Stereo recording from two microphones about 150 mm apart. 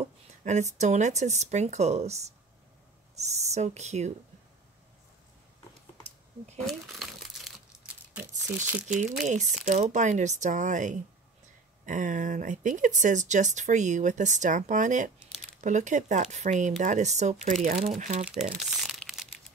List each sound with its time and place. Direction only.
0.4 s speech: 50° right (ahead or behind)
6.0 s a sound: 45° right (ahead or behind)
6.6 s crumpling: centre (ahead or behind)
8.8 s speech: 50° right (ahead or behind)
18.3 s crumpling: centre (ahead or behind)